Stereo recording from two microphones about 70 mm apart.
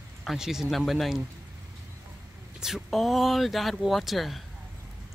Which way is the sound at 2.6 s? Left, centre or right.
Centre.